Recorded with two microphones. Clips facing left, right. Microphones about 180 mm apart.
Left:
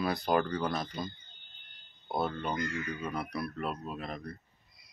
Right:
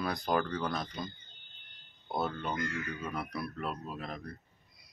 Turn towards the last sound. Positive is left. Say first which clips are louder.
# left 2 dB
turn(degrees=0)  # may be behind; listen again after turning